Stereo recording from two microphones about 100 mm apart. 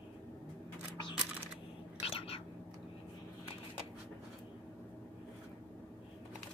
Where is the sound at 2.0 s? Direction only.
70° left (ahead or behind).